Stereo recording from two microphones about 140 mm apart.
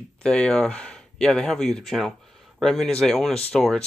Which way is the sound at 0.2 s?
5° left (ahead or behind).